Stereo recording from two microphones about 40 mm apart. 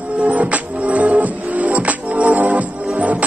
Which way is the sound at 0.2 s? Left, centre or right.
Right.